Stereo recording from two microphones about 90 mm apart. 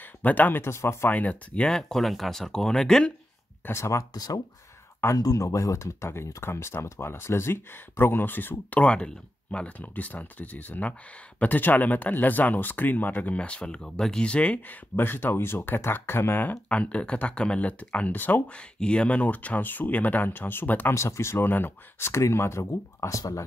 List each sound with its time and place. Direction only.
0.2 s speech: 20° left (ahead or behind)
1.1 s speech: 15° left (ahead or behind)
3.6 s speech: 30° left (ahead or behind)
4.1 s speech: 45° left (ahead or behind)